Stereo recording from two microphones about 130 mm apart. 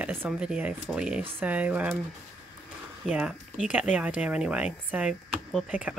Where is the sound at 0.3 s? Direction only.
5° right (ahead or behind).